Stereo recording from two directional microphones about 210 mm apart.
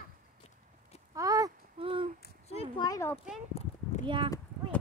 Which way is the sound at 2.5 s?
30° left (ahead or behind).